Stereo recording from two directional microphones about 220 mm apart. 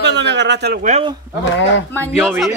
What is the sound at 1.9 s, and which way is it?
Speech, 10° left (ahead or behind).